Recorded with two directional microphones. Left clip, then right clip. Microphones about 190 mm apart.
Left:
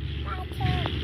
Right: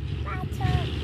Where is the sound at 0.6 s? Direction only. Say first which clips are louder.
Left 2 dB; 40° right (ahead or behind).